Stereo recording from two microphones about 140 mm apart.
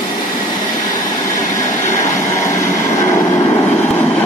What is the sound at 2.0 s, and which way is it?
Train, 20° left (ahead or behind).